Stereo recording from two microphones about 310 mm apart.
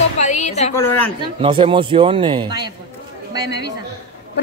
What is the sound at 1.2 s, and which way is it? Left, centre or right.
Speech, centre.